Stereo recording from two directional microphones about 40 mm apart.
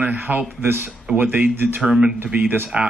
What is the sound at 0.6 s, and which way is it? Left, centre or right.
Speech, right.